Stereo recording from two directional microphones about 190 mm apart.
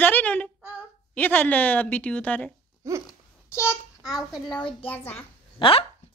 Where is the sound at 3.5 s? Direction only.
15° left (ahead or behind).